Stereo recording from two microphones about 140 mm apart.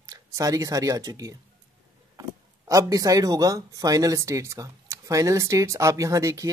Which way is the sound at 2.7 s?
25° right (ahead or behind).